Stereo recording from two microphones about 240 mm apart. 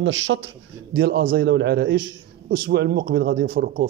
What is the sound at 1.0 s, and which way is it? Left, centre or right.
Speech, right.